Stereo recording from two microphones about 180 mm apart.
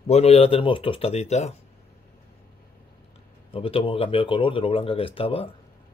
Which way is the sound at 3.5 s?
30° left (ahead or behind).